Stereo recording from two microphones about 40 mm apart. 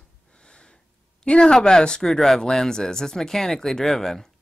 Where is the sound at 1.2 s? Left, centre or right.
Left.